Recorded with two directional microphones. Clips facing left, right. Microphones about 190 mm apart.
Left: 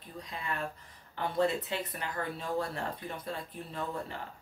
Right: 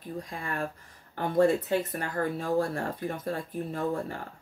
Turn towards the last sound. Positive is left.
turn(degrees=-45)  # may be behind; listen again after turning